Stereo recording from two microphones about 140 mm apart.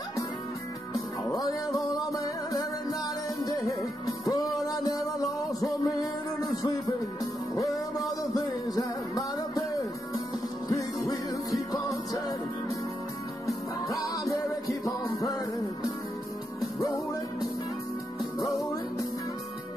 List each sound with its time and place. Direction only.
1.3 s music: 25° left (ahead or behind)
4.2 s music: 25° left (ahead or behind)
13.8 s music: 25° left (ahead or behind)